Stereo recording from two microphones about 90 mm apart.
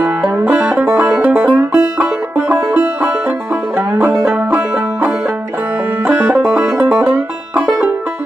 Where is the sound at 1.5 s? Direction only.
35° right (ahead or behind).